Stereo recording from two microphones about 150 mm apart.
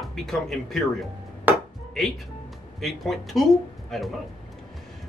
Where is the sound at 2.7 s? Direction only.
Centre (ahead or behind).